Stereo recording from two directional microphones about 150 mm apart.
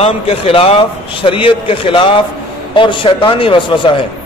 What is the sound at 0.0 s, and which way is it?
Speech, 40° left (ahead or behind).